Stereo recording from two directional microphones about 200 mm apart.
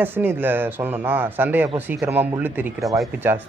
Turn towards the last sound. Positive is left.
turn(degrees=-5)  # may be behind; listen again after turning